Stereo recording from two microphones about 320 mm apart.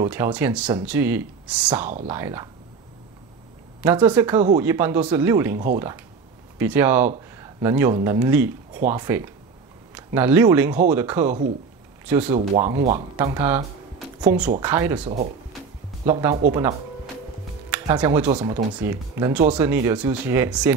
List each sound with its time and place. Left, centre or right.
0.0 s speech: centre
3.8 s speech: centre
6.6 s speech: centre
12.4 s speech: right
14.3 s speech: right
14.6 s speech: centre
16.1 s speech: centre
16.5 s music: centre
17.6 s speech: centre